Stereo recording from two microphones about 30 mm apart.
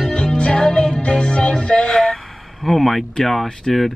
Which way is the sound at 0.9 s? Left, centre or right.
Left.